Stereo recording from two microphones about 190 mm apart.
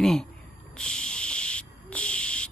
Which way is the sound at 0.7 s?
5° left (ahead or behind).